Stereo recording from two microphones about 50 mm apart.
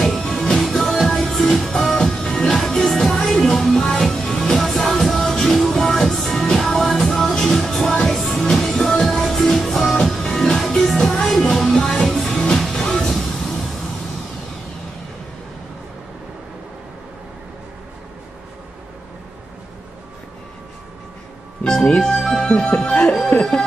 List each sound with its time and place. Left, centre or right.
0.0 s music: centre
21.6 s music: centre
22.8 s music: centre